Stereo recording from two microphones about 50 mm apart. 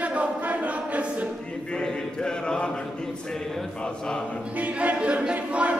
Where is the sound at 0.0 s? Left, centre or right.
Right.